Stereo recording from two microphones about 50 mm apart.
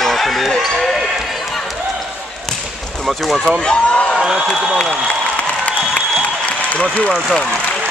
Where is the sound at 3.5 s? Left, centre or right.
Left.